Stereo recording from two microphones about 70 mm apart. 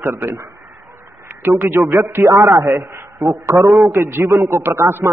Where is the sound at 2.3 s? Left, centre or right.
Right.